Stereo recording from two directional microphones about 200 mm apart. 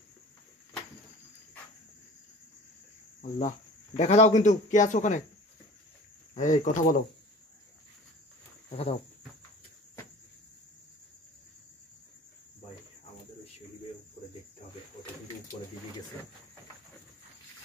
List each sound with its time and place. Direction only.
3.2 s speech: 40° left (ahead or behind)
6.3 s speech: 40° left (ahead or behind)
8.6 s a sound: 30° left (ahead or behind)